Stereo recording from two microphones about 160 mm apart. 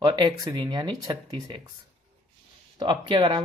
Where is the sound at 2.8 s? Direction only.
30° right (ahead or behind).